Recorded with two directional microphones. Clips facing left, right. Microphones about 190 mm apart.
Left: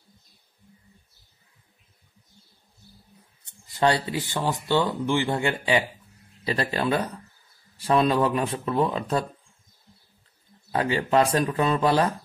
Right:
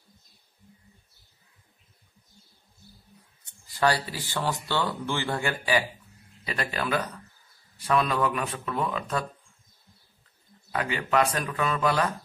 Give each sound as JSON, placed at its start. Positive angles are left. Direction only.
{"t": 3.6, "sound": "speech", "side_deg": 25}
{"t": 10.7, "sound": "speech", "side_deg": 30}